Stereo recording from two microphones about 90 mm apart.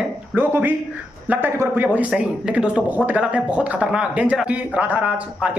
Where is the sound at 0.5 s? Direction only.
20° right (ahead or behind).